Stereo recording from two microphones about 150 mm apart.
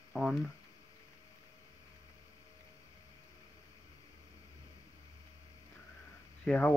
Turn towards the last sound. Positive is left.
turn(degrees=10)  # may be behind; listen again after turning